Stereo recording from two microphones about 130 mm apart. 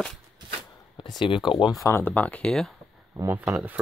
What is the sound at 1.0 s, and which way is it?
Speech, 40° left (ahead or behind).